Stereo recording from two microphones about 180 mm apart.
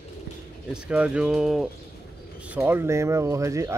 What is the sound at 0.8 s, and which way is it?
Speech, 5° right (ahead or behind).